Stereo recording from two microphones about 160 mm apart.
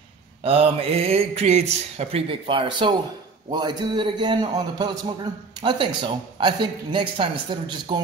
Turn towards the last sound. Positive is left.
turn(degrees=-30)  # may be behind; listen again after turning